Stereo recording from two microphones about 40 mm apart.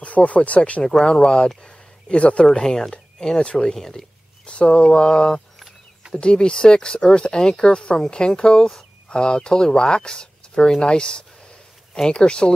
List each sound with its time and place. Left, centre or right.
0.0 s speech: left
0.8 s speech: centre
1.6 s a sound: left
2.6 s speech: centre
3.7 s speech: centre
4.5 s speech: left